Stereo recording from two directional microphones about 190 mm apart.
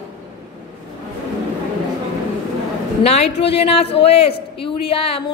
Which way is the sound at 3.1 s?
30° left (ahead or behind).